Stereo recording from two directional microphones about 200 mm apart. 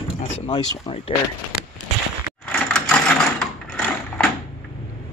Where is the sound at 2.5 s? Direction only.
5° left (ahead or behind).